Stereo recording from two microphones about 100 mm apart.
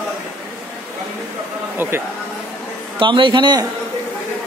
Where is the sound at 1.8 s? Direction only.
20° right (ahead or behind).